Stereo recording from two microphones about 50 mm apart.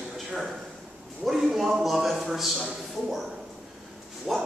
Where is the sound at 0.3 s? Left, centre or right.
Centre.